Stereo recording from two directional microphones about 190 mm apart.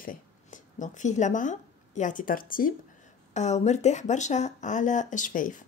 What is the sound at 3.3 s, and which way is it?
Speech, 35° left (ahead or behind).